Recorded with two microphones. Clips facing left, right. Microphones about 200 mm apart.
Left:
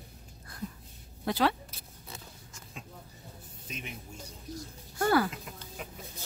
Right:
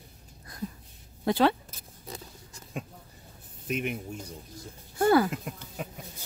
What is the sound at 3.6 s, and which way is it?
Speech, 65° right (ahead or behind).